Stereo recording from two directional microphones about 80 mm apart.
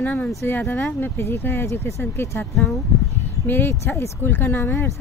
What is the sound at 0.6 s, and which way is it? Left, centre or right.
Speech, left.